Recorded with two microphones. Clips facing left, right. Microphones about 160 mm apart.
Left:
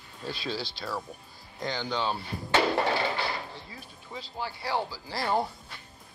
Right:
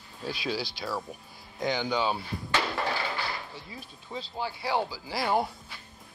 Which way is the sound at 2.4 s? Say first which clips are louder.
Left 6 dB; 25° left (ahead or behind).